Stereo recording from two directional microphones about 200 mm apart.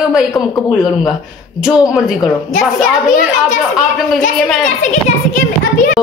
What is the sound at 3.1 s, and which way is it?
Speech, 40° left (ahead or behind).